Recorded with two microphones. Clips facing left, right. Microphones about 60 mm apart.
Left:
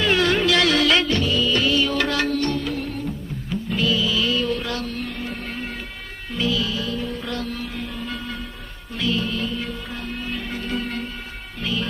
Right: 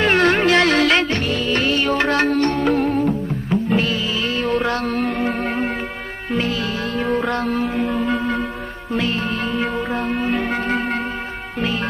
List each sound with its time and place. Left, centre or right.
0.0 s music: right
1.2 s music: right